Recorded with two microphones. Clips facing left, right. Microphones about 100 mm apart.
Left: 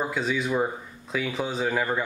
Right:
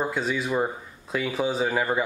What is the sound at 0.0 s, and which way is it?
Speech, centre (ahead or behind).